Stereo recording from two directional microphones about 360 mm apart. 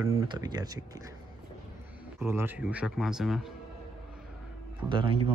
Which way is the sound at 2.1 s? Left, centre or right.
Centre.